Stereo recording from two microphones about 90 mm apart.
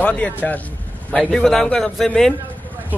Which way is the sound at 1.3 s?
5° left (ahead or behind).